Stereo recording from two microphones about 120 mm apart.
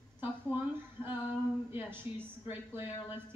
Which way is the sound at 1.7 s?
15° right (ahead or behind).